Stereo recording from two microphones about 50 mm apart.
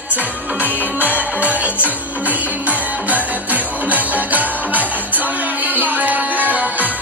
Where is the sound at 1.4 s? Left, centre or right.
Right.